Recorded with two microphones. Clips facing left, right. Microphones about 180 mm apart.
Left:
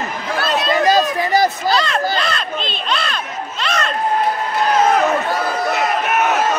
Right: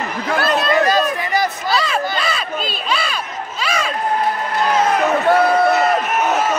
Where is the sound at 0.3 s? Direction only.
55° right (ahead or behind).